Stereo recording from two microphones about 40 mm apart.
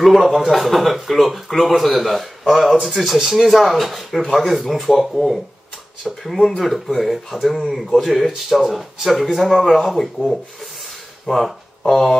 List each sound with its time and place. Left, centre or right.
0.0 s a man's voice: centre